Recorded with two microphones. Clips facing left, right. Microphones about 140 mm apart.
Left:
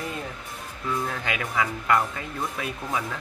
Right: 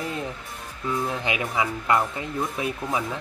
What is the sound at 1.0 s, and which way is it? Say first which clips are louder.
Speech: right 3 dB; 20° right (ahead or behind).